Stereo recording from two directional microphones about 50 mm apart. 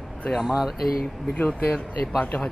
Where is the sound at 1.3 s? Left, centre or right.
Left.